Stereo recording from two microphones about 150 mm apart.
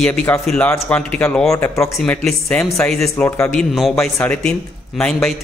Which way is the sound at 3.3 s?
20° left (ahead or behind).